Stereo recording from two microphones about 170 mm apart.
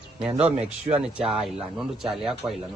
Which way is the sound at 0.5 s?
40° right (ahead or behind).